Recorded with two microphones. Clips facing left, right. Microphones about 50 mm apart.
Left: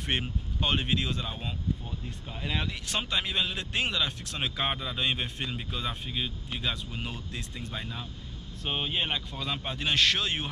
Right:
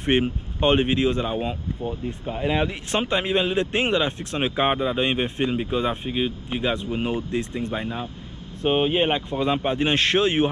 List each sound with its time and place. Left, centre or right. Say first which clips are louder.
0.0 s speech: right 10 dB; right